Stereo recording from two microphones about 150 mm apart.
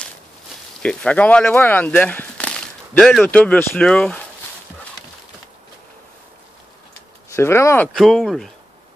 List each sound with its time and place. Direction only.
0.8 s speech: 10° left (ahead or behind)
7.3 s speech: 15° left (ahead or behind)
7.9 s speech: centre (ahead or behind)